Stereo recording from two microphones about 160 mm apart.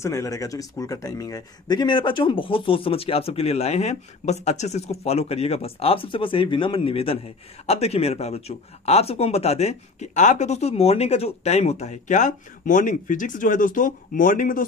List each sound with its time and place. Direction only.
0.0 s speech: 20° left (ahead or behind); by 14.7 s 60° left (ahead or behind)